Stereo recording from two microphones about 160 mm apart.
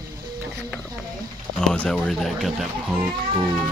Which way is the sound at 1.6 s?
5° left (ahead or behind).